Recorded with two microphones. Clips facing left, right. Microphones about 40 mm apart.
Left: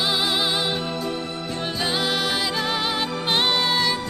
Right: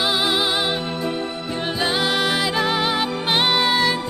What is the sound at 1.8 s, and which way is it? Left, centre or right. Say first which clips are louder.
Music: right 3 dB; centre.